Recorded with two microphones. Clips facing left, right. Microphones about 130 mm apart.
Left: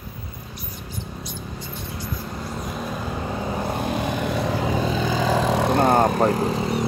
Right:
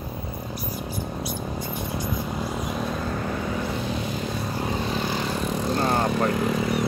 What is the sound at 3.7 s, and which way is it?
Vehicle, 55° left (ahead or behind).